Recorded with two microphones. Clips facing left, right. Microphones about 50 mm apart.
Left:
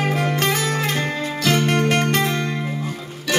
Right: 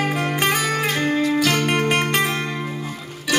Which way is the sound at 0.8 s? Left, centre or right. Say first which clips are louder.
Right 3 dB; centre.